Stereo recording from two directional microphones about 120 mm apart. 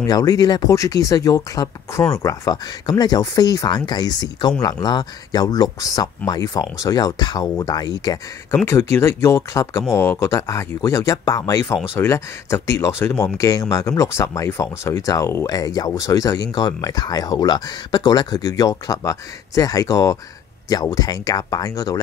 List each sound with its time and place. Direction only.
0.0 s speech: 30° left (ahead or behind)
8.6 s speech: 20° left (ahead or behind)